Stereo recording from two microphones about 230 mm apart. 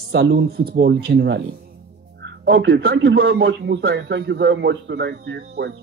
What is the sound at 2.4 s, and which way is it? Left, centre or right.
Speech, right.